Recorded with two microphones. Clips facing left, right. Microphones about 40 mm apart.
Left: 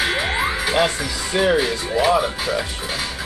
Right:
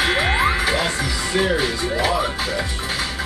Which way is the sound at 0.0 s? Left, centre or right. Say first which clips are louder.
Right 2 dB; centre.